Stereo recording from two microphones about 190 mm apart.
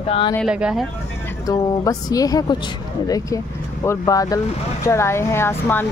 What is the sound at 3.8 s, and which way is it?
Speech, 20° left (ahead or behind).